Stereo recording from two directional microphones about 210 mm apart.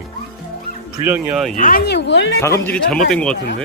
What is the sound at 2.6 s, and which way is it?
Speech, 5° left (ahead or behind).